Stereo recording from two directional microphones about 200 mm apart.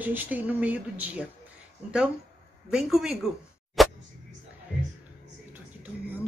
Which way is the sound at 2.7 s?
5° right (ahead or behind).